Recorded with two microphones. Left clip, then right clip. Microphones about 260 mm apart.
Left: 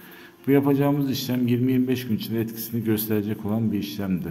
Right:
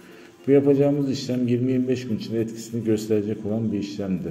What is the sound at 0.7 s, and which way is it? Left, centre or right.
A man's voice, centre.